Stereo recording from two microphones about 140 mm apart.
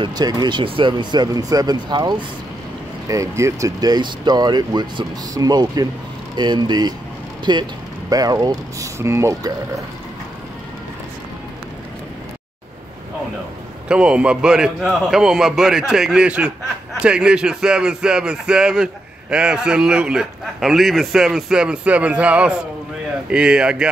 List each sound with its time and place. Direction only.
0.0 s speech: 30° right (ahead or behind)
13.8 s a man's voice: 5° right (ahead or behind)